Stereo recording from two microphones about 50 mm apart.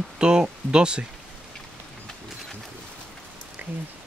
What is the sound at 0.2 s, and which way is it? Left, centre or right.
Speech, centre.